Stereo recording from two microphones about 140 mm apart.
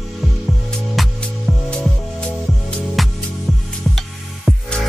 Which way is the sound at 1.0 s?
Centre (ahead or behind).